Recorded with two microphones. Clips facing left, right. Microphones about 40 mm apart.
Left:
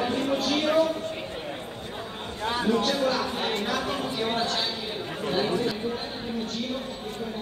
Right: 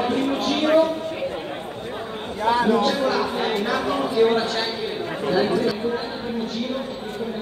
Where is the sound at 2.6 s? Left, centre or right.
Right.